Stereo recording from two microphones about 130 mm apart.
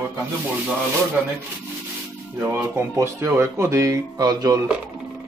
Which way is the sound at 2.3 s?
15° right (ahead or behind).